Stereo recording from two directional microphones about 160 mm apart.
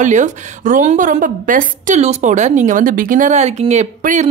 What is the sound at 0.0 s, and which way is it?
Speech, 50° right (ahead or behind).